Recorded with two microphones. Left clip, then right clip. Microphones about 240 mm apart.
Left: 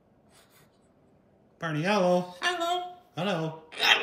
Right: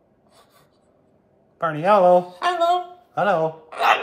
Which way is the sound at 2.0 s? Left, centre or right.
Centre.